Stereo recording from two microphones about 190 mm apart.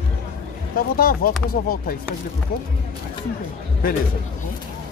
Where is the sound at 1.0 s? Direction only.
50° left (ahead or behind).